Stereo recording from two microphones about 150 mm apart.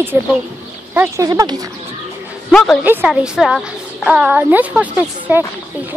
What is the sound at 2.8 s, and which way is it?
A woman's voice, 10° right (ahead or behind).